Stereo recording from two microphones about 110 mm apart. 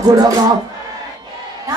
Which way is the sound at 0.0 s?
35° right (ahead or behind).